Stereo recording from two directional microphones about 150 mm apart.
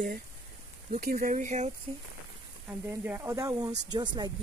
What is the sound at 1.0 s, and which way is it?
Speech, 70° right (ahead or behind).